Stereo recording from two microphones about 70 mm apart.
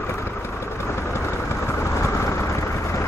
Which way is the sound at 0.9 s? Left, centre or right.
Left.